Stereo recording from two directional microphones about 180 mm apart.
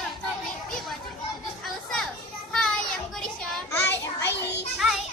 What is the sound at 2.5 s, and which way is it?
Child singing, centre (ahead or behind).